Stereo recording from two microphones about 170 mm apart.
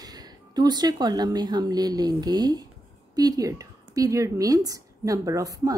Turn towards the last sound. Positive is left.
turn(degrees=-20)  # may be behind; listen again after turning